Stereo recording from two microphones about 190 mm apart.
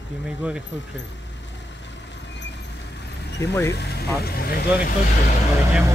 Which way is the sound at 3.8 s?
60° left (ahead or behind).